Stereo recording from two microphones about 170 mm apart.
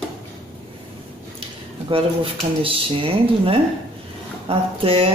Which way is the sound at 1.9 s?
30° right (ahead or behind).